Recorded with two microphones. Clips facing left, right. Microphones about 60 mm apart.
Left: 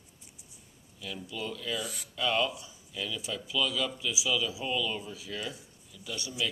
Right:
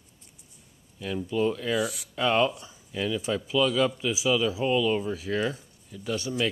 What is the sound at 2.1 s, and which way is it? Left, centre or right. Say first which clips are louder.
Speech: right 6 dB; right.